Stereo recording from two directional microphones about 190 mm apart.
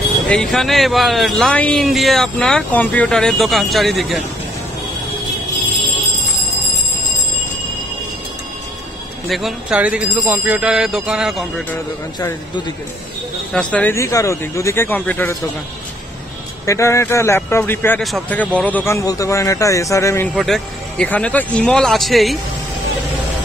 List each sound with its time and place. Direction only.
0.3 s a man's voice: 5° left (ahead or behind)
9.3 s a man's voice: 5° right (ahead or behind)
12.2 s speech: 20° left (ahead or behind)
13.5 s speech: 5° left (ahead or behind)
16.6 s speech: 15° left (ahead or behind)
20.3 s a man's voice: centre (ahead or behind)